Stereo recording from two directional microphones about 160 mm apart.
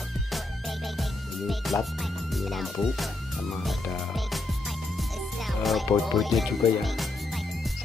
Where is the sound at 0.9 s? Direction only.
Centre (ahead or behind).